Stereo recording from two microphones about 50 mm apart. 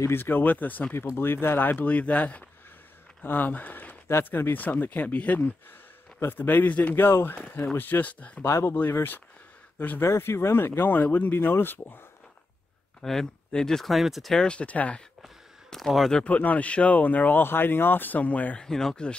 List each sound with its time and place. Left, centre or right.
0.1 s speech: left
1.1 s speech: left
4.1 s speech: left
6.1 s speech: left
7.0 s speech: left
7.3 s speech: left
8.4 s speech: left
9.8 s speech: left
10.0 s speech: left
13.0 s speech: centre
14.3 s speech: centre
15.7 s a sound: centre
16.3 s speech: left
18.6 s speech: centre